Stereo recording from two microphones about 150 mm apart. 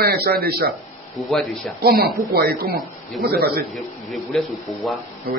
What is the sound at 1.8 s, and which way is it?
Speech, 90° right.